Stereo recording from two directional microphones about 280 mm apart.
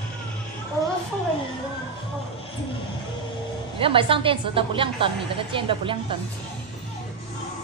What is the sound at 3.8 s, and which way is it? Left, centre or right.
A woman's voice, centre.